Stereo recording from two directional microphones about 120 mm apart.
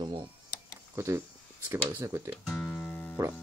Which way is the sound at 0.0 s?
40° right (ahead or behind).